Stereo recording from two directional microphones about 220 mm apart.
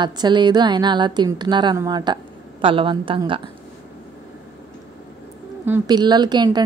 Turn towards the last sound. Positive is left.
turn(degrees=-20)  # may be behind; listen again after turning